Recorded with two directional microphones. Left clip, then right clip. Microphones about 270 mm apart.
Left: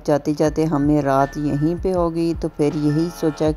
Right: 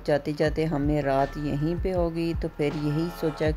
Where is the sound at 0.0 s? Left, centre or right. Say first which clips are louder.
Left 6 dB; centre.